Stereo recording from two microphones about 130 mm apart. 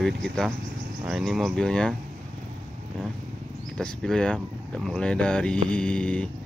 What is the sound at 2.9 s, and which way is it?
Vehicle, 10° left (ahead or behind).